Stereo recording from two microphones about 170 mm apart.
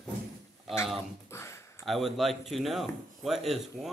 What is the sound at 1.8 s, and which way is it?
Speech, centre (ahead or behind).